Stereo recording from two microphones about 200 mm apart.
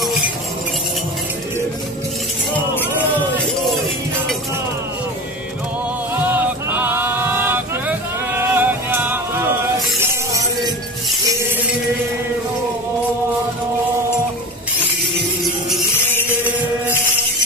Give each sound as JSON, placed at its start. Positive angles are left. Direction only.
{"t": 6.3, "sound": "male singing", "side_deg": -10}
{"t": 9.9, "sound": "music", "side_deg": -15}